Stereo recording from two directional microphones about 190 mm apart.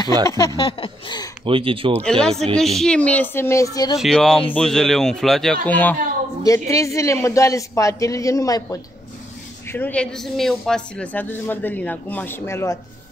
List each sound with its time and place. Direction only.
0.3 s a sound: 15° left (ahead or behind)
1.4 s speech: 30° right (ahead or behind)
2.0 s a man's voice: 5° left (ahead or behind)
4.0 s a man's voice: centre (ahead or behind)